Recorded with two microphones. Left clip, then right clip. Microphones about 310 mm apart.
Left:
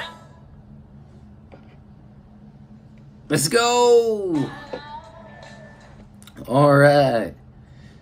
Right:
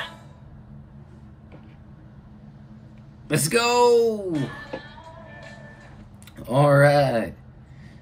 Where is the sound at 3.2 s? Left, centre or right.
Centre.